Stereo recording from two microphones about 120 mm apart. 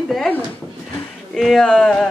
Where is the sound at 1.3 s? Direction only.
Centre (ahead or behind).